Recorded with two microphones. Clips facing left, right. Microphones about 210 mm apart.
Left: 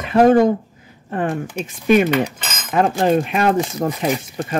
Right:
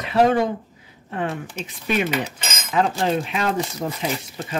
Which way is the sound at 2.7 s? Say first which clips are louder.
Left 5 dB; 50° left (ahead or behind).